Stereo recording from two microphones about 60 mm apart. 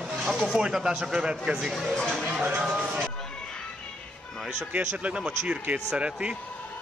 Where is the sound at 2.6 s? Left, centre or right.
Centre.